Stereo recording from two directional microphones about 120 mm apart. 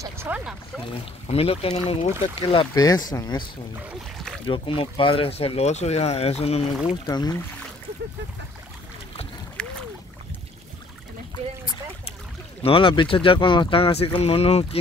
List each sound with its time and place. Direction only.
0.3 s boat: 15° right (ahead or behind)
1.2 s speech: 55° left (ahead or behind); by 3.4 s 35° left (ahead or behind)
4.5 s speech: 45° left (ahead or behind)
7.1 s speech: 35° left (ahead or behind)
9.6 s boat: 10° left (ahead or behind)
12.6 s speech: 45° left (ahead or behind)